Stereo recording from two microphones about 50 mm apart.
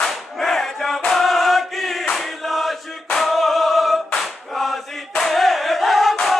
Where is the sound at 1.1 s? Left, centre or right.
Centre.